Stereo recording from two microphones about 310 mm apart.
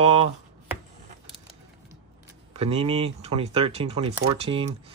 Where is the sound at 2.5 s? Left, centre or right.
Centre.